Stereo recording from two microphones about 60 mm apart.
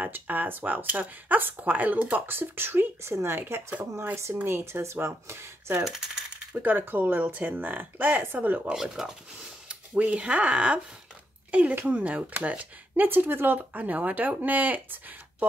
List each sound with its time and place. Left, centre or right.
0.0 s speech: right
5.8 s coin: centre
6.5 s speech: right
8.7 s speech: centre
9.7 s speech: right
13.6 s speech: right